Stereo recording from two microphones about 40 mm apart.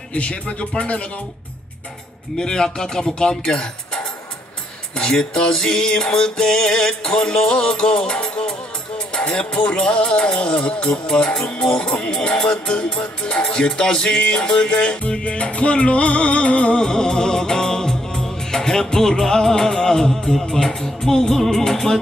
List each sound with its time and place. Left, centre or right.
0.1 s music: left
2.3 s music: centre
11.1 s music: centre; by 16.8 s left
16.8 s music: centre